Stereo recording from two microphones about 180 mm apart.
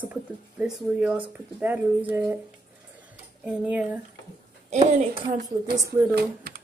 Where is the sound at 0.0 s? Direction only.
5° right (ahead or behind).